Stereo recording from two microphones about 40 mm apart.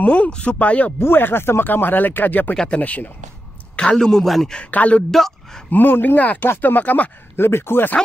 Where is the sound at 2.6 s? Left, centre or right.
Left.